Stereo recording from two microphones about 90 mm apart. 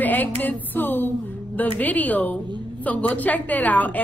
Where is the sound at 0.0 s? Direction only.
20° left (ahead or behind).